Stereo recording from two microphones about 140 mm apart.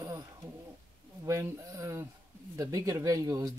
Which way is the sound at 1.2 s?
20° right (ahead or behind).